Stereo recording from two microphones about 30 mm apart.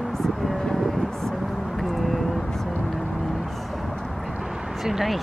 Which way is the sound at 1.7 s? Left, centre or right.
Centre.